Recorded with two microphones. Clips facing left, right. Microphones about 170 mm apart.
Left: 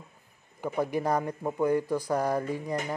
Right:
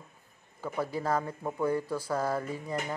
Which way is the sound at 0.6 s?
15° left (ahead or behind).